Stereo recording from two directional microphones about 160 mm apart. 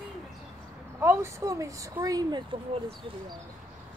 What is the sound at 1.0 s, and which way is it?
Speech, 15° right (ahead or behind).